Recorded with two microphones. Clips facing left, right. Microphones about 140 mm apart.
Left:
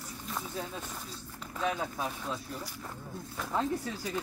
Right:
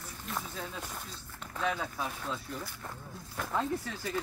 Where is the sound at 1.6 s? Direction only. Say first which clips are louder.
Left 1 dB; 20° left (ahead or behind).